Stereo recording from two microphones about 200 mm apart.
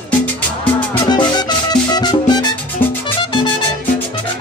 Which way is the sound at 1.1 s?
20° left (ahead or behind).